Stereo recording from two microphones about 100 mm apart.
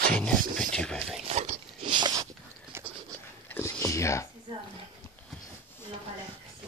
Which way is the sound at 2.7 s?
25° right (ahead or behind).